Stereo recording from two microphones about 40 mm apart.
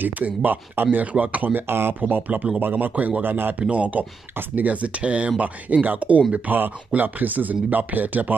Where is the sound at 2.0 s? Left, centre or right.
Right.